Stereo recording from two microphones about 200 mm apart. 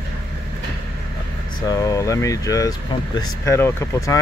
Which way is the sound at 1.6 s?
15° left (ahead or behind).